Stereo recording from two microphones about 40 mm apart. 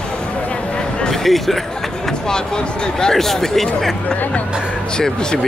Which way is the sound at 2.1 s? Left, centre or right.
Centre.